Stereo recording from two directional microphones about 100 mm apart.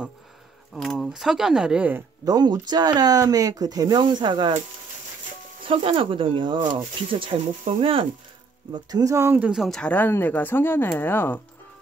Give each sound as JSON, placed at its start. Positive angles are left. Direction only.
{"t": 0.7, "sound": "speech", "side_deg": 0}
{"t": 2.2, "sound": "speech", "side_deg": -45}
{"t": 4.0, "sound": "speech", "side_deg": -50}
{"t": 5.7, "sound": "speech", "side_deg": -60}
{"t": 8.7, "sound": "speech", "side_deg": -40}
{"t": 9.4, "sound": "speech", "side_deg": -5}
{"t": 9.7, "sound": "speech", "side_deg": 10}